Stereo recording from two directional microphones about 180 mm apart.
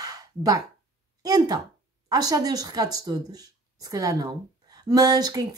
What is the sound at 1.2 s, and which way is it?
A woman's voice, 20° right (ahead or behind).